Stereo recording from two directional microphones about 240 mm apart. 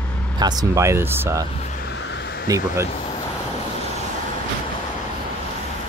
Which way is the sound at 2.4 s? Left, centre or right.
Centre.